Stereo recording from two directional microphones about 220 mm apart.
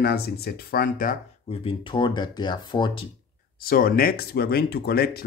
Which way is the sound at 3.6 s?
40° left (ahead or behind).